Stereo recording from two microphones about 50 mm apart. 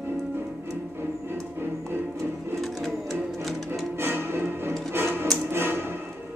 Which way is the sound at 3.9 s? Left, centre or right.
Right.